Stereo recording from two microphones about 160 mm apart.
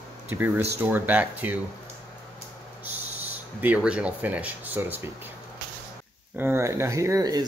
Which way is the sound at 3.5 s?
10° right (ahead or behind).